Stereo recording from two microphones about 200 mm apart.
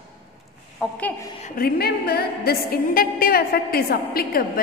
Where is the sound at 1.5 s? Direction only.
50° left (ahead or behind).